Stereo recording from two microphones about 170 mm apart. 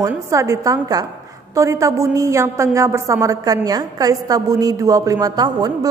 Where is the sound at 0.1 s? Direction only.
15° right (ahead or behind).